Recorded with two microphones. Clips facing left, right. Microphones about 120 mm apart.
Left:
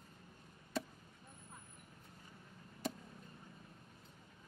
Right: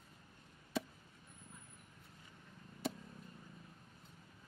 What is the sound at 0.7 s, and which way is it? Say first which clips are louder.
Chop: right 1 dB; centre (ahead or behind).